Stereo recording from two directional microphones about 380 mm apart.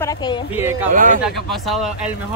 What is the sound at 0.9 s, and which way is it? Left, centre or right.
Speech, right.